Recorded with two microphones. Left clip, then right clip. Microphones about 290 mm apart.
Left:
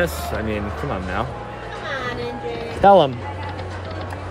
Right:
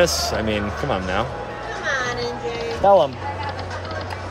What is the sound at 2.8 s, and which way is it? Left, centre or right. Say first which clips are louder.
Speech: left 2 dB; left.